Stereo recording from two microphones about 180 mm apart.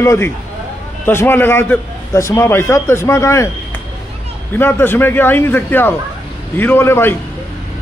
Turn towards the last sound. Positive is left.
turn(degrees=15)  # may be behind; listen again after turning